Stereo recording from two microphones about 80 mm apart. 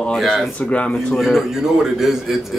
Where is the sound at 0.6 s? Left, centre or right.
Centre.